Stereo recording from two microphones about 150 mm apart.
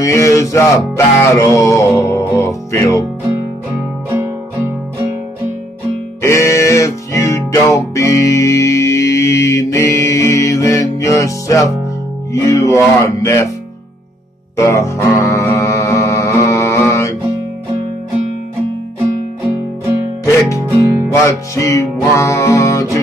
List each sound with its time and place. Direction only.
0.0 s music: 20° left (ahead or behind)
4.1 s music: 20° right (ahead or behind)
6.2 s music: 20° left (ahead or behind)
14.6 s music: 20° left (ahead or behind)
20.2 s music: 20° left (ahead or behind)